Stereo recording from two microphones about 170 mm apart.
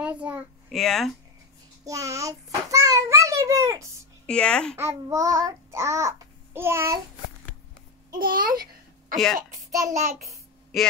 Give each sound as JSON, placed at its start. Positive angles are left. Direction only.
{"t": 0.0, "sound": "a sound", "side_deg": -10}
{"t": 0.7, "sound": "speech", "side_deg": 0}
{"t": 1.9, "sound": "a child's voice", "side_deg": -20}
{"t": 4.3, "sound": "speech", "side_deg": 5}
{"t": 4.7, "sound": "child singing", "side_deg": -15}
{"t": 8.2, "sound": "a child's voice", "side_deg": -55}
{"t": 9.1, "sound": "speech", "side_deg": 0}
{"t": 9.8, "sound": "a child's voice", "side_deg": -45}